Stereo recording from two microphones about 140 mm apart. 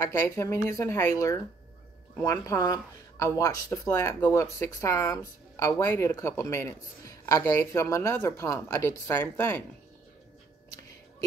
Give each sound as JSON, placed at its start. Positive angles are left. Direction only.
{"t": 0.0, "sound": "speech", "side_deg": 20}